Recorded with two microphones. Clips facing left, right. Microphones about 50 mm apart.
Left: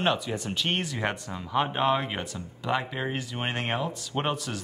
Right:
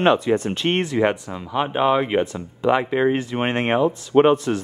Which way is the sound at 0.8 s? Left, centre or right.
Right.